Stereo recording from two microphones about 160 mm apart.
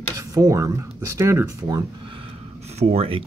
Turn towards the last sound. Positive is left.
turn(degrees=-40)  # may be behind; listen again after turning